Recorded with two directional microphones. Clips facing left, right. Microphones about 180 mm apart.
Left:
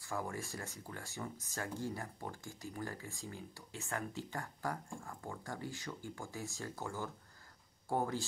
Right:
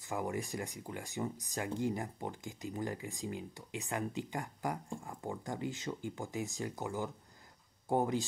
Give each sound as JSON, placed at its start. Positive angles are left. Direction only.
{"t": 0.0, "sound": "speech", "side_deg": -20}